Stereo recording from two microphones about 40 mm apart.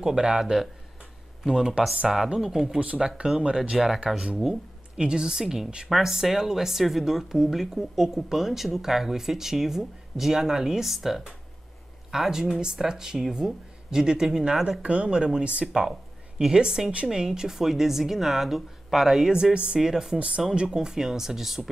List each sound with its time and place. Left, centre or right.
0.0 s speech: centre
1.7 s speech: centre
14.8 s speech: right; by 19.3 s centre
19.5 s speech: right
19.8 s speech: centre
20.2 s speech: right
20.4 s speech: centre